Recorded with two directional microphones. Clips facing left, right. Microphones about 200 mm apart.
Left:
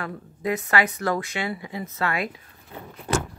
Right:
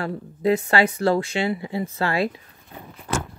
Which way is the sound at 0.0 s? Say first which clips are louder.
Right 6 dB; 30° right (ahead or behind).